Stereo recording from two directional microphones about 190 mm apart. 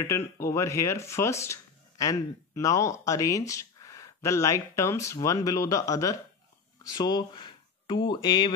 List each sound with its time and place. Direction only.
0.0 s speech: 15° left (ahead or behind)